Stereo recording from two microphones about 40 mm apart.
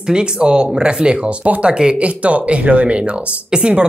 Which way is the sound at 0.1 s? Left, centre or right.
Right.